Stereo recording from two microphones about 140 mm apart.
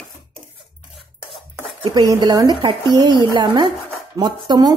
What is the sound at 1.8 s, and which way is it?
Speech, 25° right (ahead or behind).